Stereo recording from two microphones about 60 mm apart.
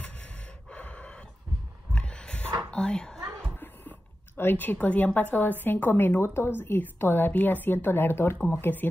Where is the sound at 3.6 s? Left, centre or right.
Left.